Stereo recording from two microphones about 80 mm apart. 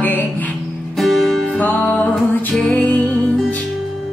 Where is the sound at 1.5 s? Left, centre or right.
Centre.